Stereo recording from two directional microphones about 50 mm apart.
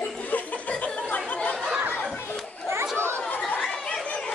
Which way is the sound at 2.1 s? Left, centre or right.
Left.